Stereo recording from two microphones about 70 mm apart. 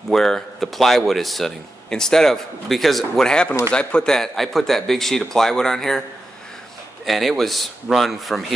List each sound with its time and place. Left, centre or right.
0.1 s speech: centre
7.1 s speech: centre